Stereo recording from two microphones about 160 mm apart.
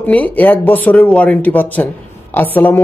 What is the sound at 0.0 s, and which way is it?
Speech, 10° left (ahead or behind).